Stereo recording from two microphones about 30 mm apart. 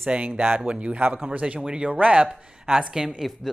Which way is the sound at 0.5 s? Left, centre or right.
Right.